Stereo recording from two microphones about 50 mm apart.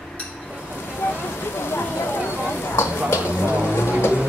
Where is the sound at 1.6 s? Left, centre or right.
Left.